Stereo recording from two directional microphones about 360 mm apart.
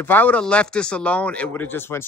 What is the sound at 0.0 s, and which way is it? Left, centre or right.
Speech, centre.